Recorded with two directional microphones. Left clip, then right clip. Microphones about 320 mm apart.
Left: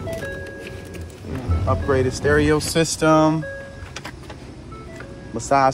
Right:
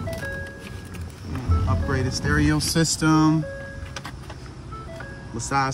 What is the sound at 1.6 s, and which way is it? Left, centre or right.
Speech, centre.